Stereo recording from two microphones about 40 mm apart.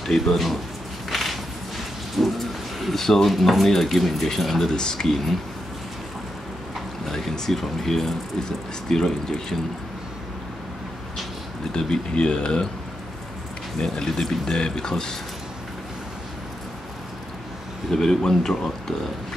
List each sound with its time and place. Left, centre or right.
0.0 s speech: centre
1.1 s walk: centre
2.1 s a sound: centre
3.3 s speech: centre
5.0 s speech: centre
7.1 s speech: centre
11.7 s speech: left
13.7 s speech: centre
17.9 s speech: centre